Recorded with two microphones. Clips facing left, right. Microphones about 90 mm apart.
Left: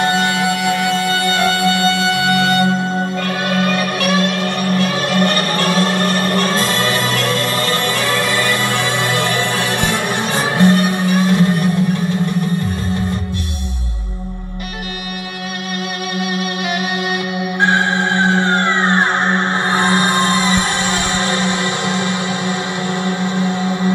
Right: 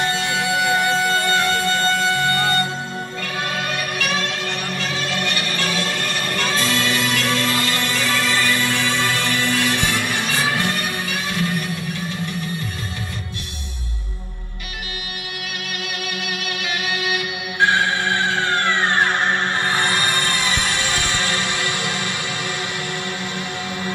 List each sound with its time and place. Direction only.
0.0 s music: 65° left (ahead or behind); by 11.7 s 35° left (ahead or behind)
17.6 s music: 35° left (ahead or behind)